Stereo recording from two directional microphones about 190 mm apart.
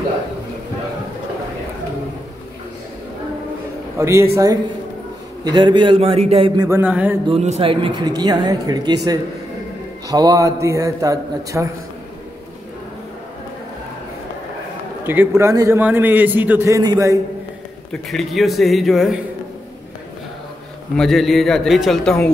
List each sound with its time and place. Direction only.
4.0 s a man's voice: 15° right (ahead or behind)
5.4 s speech: 20° right (ahead or behind)
6.8 s a man's voice: 10° right (ahead or behind)
7.2 s a man's voice: 35° right (ahead or behind); by 11.7 s 15° right (ahead or behind)
15.0 s a man's voice: 10° right (ahead or behind)
18.0 s a man's voice: centre (ahead or behind)
20.9 s a man's voice: centre (ahead or behind)